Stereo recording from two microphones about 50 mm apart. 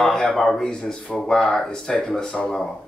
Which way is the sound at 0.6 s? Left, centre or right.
Centre.